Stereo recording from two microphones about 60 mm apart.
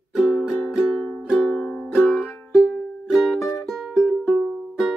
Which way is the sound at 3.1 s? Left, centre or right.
Centre.